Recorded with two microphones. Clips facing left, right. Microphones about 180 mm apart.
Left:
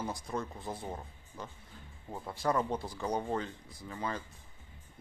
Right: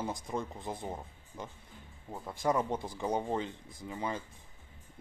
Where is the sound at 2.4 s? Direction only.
20° right (ahead or behind).